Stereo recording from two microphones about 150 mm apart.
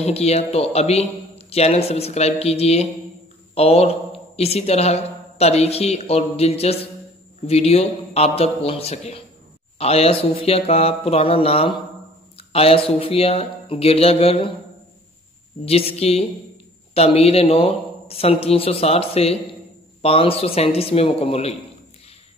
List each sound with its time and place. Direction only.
0.0 s a man's voice: 45° left (ahead or behind)
15.6 s a man's voice: 40° left (ahead or behind)